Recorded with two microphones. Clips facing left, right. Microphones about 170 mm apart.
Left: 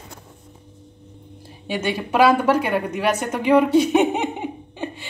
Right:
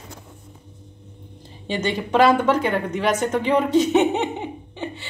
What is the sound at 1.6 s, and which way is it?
A woman's voice, 10° left (ahead or behind).